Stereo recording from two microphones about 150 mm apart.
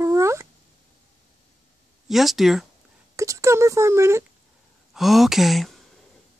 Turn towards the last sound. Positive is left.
turn(degrees=0)  # may be behind; listen again after turning